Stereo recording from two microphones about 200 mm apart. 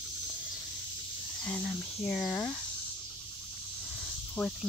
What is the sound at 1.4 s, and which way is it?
Speech, 5° left (ahead or behind).